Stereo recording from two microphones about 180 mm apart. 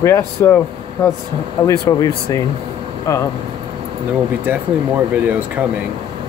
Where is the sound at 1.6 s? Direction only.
20° left (ahead or behind).